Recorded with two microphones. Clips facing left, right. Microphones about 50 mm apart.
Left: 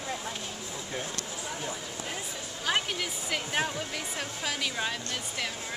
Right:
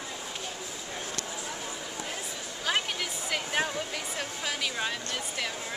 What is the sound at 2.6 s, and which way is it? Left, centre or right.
Speech, centre.